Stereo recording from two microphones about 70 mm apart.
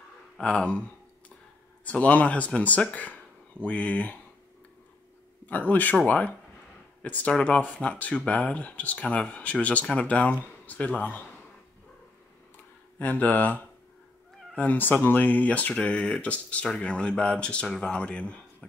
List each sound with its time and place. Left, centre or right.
0.4 s speech: centre
1.9 s speech: left
5.5 s speech: left
13.0 s speech: left